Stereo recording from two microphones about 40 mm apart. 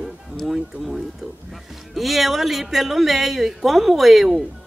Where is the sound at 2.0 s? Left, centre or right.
Centre.